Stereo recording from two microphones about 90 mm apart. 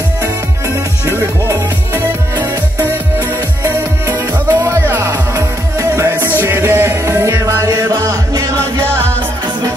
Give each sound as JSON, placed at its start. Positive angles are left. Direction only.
{"t": 3.6, "sound": "music", "side_deg": -35}